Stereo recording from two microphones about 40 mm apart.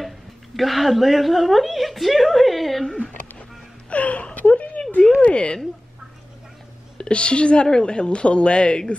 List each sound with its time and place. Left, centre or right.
0.6 s a woman's voice: centre
3.9 s a sound: left
5.2 s a woman's voice: left
7.0 s a woman's voice: left